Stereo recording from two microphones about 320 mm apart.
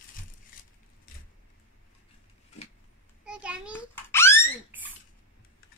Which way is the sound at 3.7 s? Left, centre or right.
Centre.